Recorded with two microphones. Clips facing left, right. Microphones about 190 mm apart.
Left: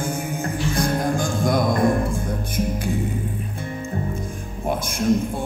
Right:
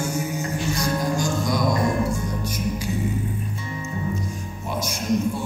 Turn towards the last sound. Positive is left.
turn(degrees=55)  # may be behind; listen again after turning